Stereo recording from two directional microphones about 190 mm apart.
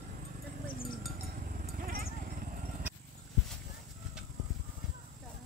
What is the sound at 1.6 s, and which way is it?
Clip-clop, 50° right (ahead or behind).